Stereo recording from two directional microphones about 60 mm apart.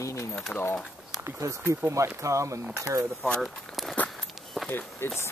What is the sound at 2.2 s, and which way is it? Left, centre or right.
Speech, right.